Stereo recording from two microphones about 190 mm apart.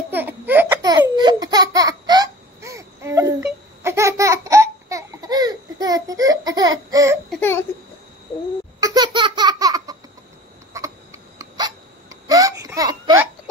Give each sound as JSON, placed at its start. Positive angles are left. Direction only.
{"t": 0.1, "sound": "baby laughter", "side_deg": -10}
{"t": 0.8, "sound": "baby laughter", "side_deg": -20}
{"t": 3.4, "sound": "laughter", "side_deg": -15}
{"t": 7.2, "sound": "a sound", "side_deg": 10}
{"t": 8.7, "sound": "laughter", "side_deg": -20}
{"t": 10.7, "sound": "hiccup", "side_deg": -15}